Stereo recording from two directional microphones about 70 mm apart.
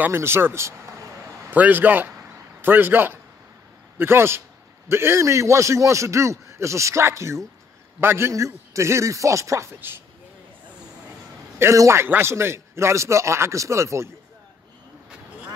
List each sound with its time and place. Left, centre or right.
0.1 s speech: right
1.5 s a man's voice: right
9.8 s a man's voice: right
11.5 s a sound: right
11.8 s a man's voice: right